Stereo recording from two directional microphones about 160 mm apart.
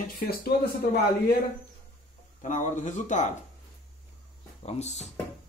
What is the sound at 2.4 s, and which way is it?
Speech, 50° left (ahead or behind).